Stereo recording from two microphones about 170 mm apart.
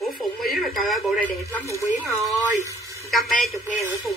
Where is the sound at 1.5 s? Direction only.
15° left (ahead or behind).